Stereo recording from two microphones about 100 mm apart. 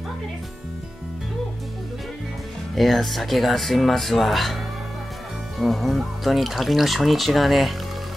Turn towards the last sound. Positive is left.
turn(degrees=0)  # may be behind; listen again after turning